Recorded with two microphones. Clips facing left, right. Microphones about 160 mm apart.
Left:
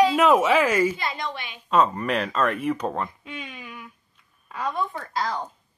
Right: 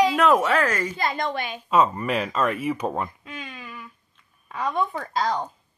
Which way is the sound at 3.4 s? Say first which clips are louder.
Right 2 dB; 15° left (ahead or behind).